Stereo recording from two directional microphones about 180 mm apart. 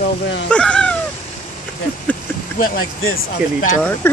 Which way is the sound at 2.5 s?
50° left (ahead or behind).